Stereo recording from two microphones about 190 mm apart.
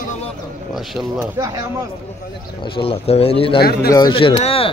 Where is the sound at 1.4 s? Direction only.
15° right (ahead or behind).